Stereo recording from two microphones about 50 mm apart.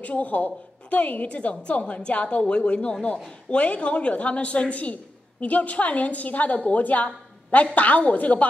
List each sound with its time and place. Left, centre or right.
0.0 s a woman's voice: left